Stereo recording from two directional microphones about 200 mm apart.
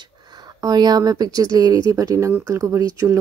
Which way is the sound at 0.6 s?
20° right (ahead or behind).